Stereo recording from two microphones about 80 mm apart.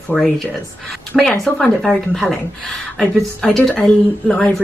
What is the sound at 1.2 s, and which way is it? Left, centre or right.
Speech, centre.